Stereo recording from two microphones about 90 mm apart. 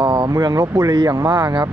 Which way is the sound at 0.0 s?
60° right (ahead or behind).